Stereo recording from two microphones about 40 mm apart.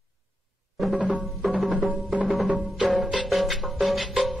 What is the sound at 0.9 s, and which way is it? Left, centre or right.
Music, right.